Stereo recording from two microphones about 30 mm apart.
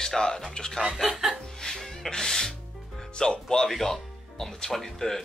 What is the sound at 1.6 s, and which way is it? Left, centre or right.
Music, centre.